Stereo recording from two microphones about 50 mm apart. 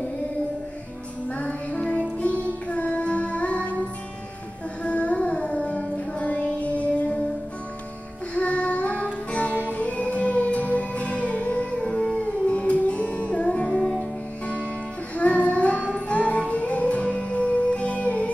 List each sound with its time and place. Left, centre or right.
1.3 s music: left
2.7 s child singing: left
4.8 s music: left
8.4 s music: left
11.8 s howl: centre
12.4 s music: left
15.1 s music: left